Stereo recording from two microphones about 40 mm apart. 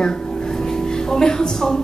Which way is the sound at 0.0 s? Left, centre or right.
Centre.